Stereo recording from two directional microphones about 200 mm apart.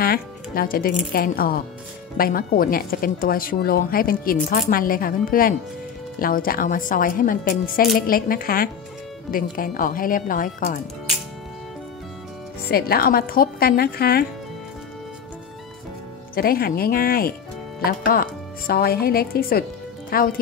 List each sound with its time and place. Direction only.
0.0 s speech: 50° left (ahead or behind)
12.6 s speech: 50° left (ahead or behind)
16.3 s speech: 50° left (ahead or behind)